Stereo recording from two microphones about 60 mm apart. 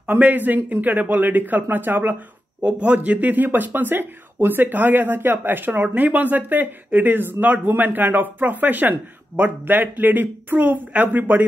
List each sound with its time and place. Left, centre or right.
0.1 s speech: right